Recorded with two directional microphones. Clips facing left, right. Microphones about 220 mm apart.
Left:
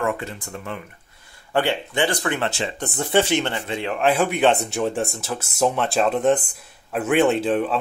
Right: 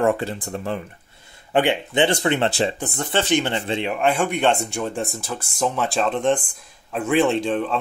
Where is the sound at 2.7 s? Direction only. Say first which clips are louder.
Left 1 dB; centre (ahead or behind).